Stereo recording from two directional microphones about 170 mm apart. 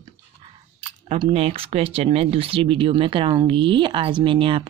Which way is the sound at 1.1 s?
35° right (ahead or behind).